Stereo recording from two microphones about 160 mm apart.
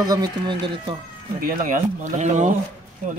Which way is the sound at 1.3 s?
60° right (ahead or behind).